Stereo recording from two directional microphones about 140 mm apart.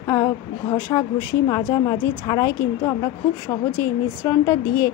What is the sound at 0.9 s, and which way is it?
Speech, 30° left (ahead or behind).